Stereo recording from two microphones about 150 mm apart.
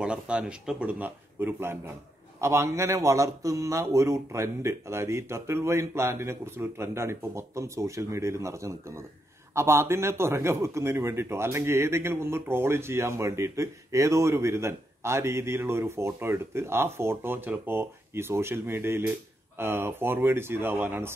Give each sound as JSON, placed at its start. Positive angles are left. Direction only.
{"t": 0.0, "sound": "a man's voice", "side_deg": -5}